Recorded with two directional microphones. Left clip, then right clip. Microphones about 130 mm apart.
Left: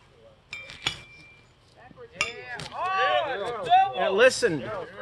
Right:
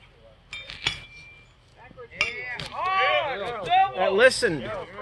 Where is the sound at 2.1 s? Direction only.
40° left (ahead or behind).